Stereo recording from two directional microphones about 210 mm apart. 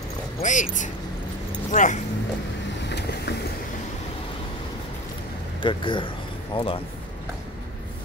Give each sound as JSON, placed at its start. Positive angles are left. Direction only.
{"t": 0.4, "sound": "speech", "side_deg": 35}
{"t": 2.9, "sound": "vehicle", "side_deg": 50}
{"t": 5.6, "sound": "speech", "side_deg": 25}